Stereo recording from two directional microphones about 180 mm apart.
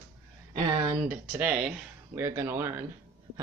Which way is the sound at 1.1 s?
5° right (ahead or behind).